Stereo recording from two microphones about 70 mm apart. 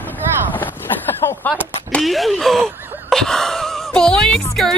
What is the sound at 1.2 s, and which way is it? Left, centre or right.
Speech, left.